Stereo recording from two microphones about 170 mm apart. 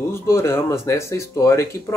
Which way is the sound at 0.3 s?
15° left (ahead or behind).